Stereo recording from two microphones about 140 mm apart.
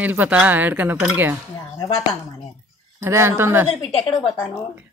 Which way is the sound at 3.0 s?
20° right (ahead or behind).